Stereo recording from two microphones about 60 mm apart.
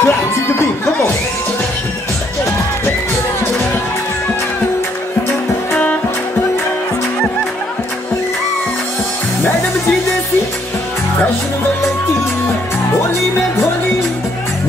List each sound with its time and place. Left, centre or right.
0.0 s music: left